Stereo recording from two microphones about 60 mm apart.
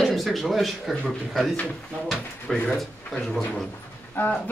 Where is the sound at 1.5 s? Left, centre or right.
Left.